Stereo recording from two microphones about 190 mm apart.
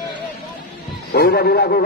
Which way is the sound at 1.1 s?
55° left (ahead or behind).